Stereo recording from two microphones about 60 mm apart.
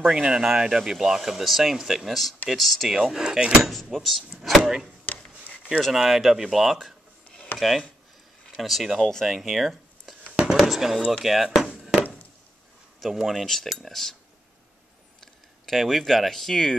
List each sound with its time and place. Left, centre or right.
0.1 s speech: centre
3.7 s speech: centre
5.1 s a sound: left
5.8 s speech: centre
11.2 s a sound: centre
13.0 s speech: centre
15.1 s speech: centre